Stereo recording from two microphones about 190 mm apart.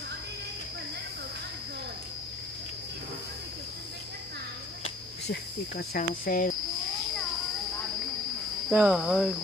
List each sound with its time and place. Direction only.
5.2 s speech: 60° left (ahead or behind)
8.6 s cricket: 5° right (ahead or behind)